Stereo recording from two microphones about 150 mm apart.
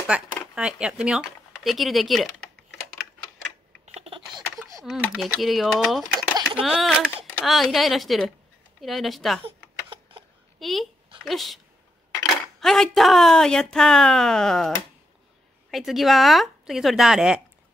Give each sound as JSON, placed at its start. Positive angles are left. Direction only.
{"t": 0.0, "sound": "speech", "side_deg": -5}
{"t": 3.8, "sound": "a sound", "side_deg": -45}
{"t": 4.6, "sound": "a sound", "side_deg": -20}
{"t": 4.8, "sound": "speech", "side_deg": 0}
{"t": 10.6, "sound": "speech", "side_deg": 0}
{"t": 15.7, "sound": "speech", "side_deg": 0}